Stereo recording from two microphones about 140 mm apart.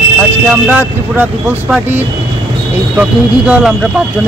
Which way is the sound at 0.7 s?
10° right (ahead or behind).